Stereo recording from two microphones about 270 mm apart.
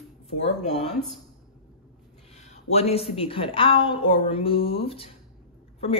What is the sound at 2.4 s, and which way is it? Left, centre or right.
Speech, left.